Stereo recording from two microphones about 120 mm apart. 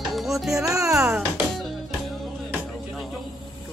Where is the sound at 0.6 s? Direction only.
30° right (ahead or behind).